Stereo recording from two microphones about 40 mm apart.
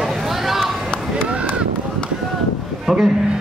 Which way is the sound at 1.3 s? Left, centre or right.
Right.